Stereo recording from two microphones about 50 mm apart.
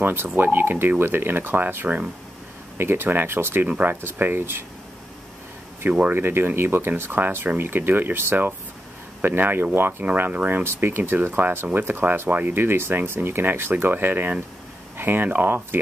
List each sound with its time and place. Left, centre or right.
0.0 s speech: right
3.6 s speech: right
4.0 s speech: right
5.9 s speech: right